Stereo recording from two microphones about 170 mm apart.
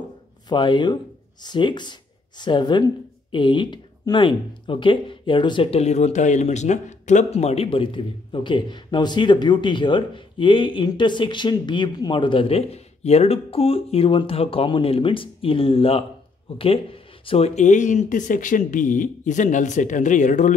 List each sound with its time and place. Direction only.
0.5 s speech: 25° left (ahead or behind); by 20.5 s 45° left (ahead or behind)